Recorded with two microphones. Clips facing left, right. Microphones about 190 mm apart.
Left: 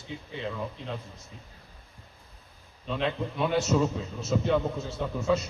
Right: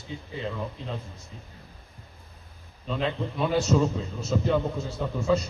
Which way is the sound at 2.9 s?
Centre (ahead or behind).